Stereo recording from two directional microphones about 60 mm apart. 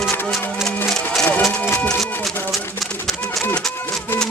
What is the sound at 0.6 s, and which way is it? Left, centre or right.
Music, centre.